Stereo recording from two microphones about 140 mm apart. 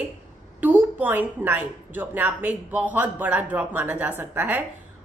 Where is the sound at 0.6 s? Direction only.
10° right (ahead or behind).